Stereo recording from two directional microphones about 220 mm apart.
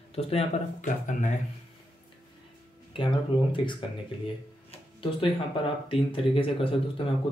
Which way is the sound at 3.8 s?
20° left (ahead or behind).